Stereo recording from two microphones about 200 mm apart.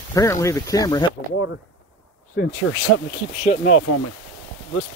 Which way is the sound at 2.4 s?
60° left (ahead or behind).